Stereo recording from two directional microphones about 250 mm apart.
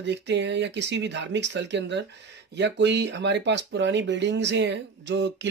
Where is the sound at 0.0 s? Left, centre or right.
Right.